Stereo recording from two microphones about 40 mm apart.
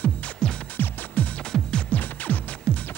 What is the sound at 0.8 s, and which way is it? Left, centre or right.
Music, left.